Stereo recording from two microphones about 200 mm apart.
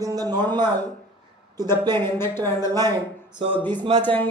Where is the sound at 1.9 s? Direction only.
10° left (ahead or behind).